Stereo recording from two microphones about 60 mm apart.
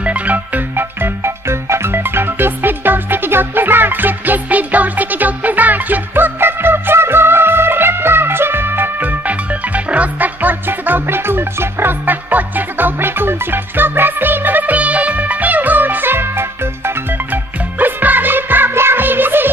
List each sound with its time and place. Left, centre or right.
0.0 s music: right
0.7 s music: right
9.8 s music: right